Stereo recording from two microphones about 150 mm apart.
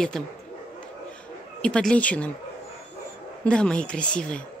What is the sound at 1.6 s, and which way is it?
Speech, 5° left (ahead or behind).